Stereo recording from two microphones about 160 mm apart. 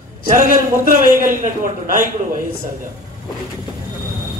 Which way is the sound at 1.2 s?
55° right (ahead or behind).